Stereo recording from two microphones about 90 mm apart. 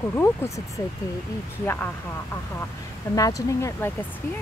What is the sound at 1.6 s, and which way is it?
Speech, 20° left (ahead or behind).